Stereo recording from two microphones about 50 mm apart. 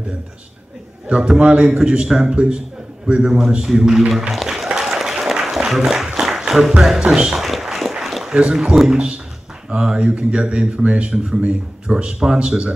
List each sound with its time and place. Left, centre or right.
1.2 s a man's voice: centre
3.3 s a man's voice: centre
4.3 s applause: centre
6.1 s music: centre
6.7 s a man's voice: centre
7.4 s run: centre
8.3 s a man's voice: right